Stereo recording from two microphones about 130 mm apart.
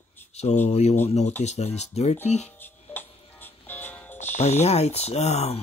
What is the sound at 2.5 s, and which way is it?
Music, 15° left (ahead or behind).